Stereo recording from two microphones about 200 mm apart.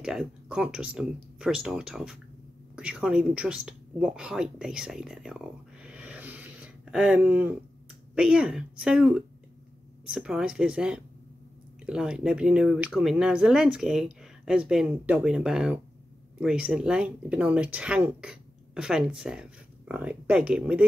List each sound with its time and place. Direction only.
0.0 s speech: centre (ahead or behind)